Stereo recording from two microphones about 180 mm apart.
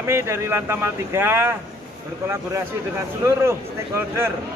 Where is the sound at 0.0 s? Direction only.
15° right (ahead or behind).